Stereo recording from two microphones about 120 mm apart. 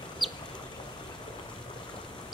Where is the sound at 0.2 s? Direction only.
Centre (ahead or behind).